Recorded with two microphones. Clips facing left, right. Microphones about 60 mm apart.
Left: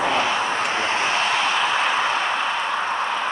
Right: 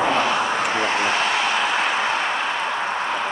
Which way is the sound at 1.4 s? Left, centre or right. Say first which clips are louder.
Even; right.